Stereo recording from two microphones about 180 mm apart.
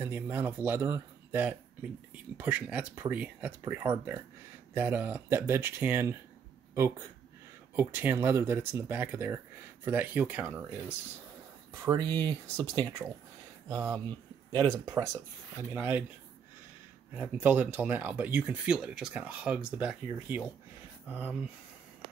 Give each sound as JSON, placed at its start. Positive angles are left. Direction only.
{"t": 0.0, "sound": "speech", "side_deg": -10}
{"t": 7.7, "sound": "speech", "side_deg": -10}
{"t": 11.8, "sound": "speech", "side_deg": -20}
{"t": 17.1, "sound": "speech", "side_deg": -10}